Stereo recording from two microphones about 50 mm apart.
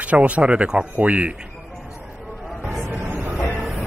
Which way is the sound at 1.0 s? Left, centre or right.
Right.